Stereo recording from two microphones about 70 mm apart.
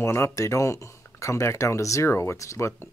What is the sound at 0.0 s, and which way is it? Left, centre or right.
Speech, left.